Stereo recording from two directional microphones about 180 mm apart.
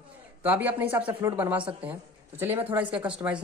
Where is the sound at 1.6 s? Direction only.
30° right (ahead or behind).